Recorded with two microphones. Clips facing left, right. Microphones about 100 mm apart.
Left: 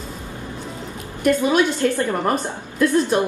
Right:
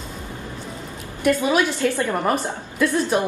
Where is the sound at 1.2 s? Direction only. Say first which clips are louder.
Left 1 dB; centre (ahead or behind).